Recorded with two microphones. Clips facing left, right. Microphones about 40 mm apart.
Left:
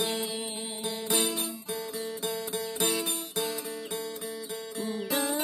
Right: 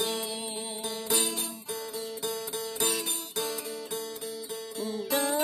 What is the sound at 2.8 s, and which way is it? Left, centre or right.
Music, centre.